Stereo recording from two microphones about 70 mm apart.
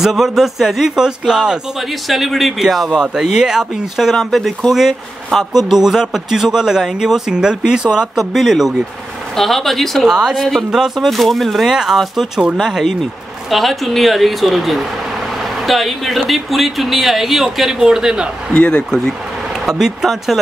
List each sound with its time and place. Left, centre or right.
0.0 s a man's voice: centre
18.5 s speech: centre
19.6 s speech: centre